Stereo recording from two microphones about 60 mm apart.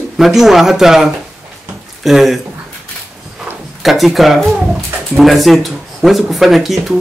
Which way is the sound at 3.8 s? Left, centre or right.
Centre.